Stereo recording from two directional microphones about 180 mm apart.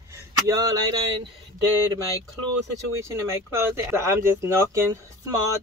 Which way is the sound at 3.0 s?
15° right (ahead or behind).